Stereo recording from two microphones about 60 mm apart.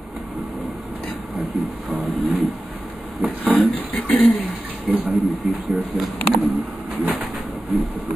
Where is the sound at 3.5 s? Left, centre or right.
Left.